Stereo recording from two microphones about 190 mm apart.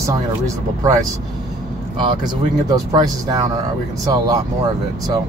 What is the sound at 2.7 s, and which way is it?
Speech, 20° right (ahead or behind).